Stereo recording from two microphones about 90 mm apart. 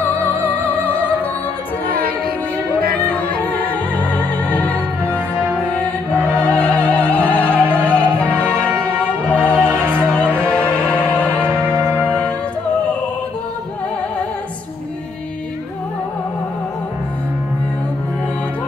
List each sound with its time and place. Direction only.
3.7 s music: 20° left (ahead or behind)
6.1 s opera: 15° left (ahead or behind)
9.2 s music: 15° left (ahead or behind)
9.7 s music: 20° right (ahead or behind)
10.4 s music: 15° left (ahead or behind)
11.7 s music: 30° right (ahead or behind)